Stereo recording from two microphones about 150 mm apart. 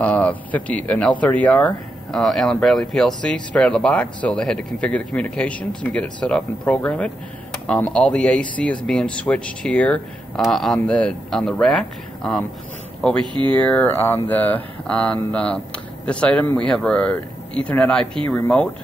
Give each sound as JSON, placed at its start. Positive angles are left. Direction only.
{"t": 0.0, "sound": "speech", "side_deg": 10}
{"t": 13.2, "sound": "speech", "side_deg": -30}
{"t": 13.6, "sound": "speech", "side_deg": 10}